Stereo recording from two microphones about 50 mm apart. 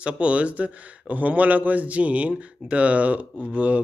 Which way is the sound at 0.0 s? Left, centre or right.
Right.